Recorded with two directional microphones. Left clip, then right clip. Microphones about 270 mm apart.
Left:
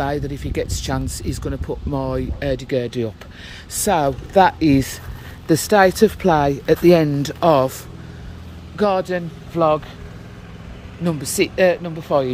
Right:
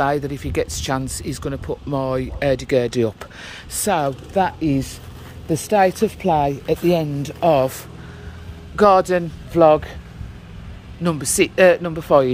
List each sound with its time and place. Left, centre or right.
0.0 s speech: centre
3.4 s speech: centre
8.7 s a man's voice: centre
11.1 s speech: centre